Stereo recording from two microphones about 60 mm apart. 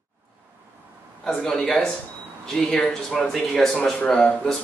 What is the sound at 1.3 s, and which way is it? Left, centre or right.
A man's voice, centre.